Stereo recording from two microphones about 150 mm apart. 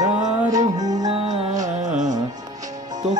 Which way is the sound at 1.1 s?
40° right (ahead or behind).